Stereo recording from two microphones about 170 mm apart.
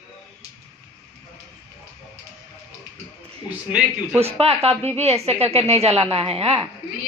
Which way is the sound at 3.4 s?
10° right (ahead or behind).